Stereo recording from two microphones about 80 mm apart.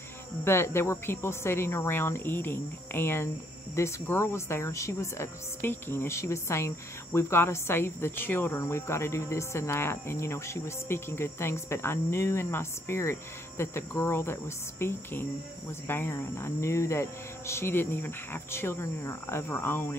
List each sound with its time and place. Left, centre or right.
0.4 s speech: left